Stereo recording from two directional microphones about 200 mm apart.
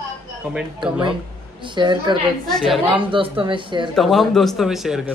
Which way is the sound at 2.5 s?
Centre (ahead or behind).